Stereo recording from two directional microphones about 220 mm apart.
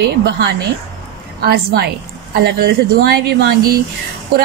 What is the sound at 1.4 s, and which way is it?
A woman's voice, 45° right (ahead or behind).